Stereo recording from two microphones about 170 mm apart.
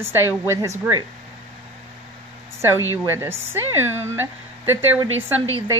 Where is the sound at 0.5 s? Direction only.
15° right (ahead or behind).